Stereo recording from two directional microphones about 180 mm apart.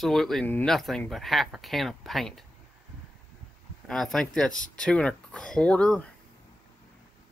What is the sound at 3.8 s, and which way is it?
Speech, centre (ahead or behind).